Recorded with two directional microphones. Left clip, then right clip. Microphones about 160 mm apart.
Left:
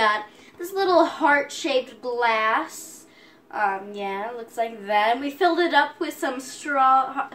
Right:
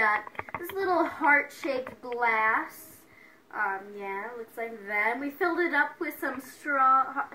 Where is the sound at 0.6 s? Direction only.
5° left (ahead or behind).